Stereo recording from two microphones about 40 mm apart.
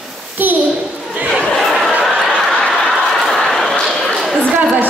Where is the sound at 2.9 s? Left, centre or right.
Centre.